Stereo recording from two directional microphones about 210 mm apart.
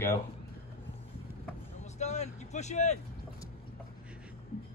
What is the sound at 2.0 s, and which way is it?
Speech, 35° left (ahead or behind).